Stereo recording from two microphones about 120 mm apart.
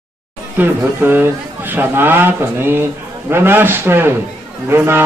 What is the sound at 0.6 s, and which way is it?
A man's voice, 15° right (ahead or behind).